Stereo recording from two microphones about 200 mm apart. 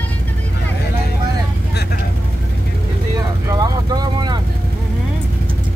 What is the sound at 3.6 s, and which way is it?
Vehicle, 20° right (ahead or behind).